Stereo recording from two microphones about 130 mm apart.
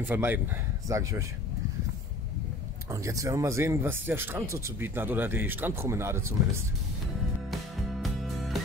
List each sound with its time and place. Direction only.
0.0 s speech: 15° right (ahead or behind)
2.9 s speech: 25° right (ahead or behind)
8.0 s music: centre (ahead or behind)